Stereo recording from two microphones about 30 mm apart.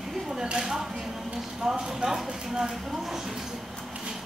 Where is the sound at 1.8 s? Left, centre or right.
Right.